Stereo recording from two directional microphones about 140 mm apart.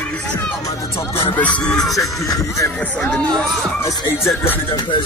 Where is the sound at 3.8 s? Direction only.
20° left (ahead or behind).